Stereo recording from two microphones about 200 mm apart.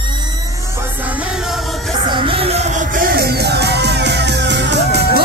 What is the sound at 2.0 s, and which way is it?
Music, 25° right (ahead or behind).